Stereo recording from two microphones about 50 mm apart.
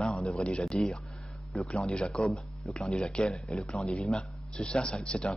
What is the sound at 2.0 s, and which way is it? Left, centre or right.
Speech, centre.